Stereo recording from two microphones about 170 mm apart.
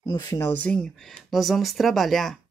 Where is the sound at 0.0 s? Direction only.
20° left (ahead or behind).